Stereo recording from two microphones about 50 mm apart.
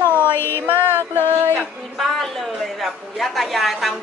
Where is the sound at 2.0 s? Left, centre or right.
Centre.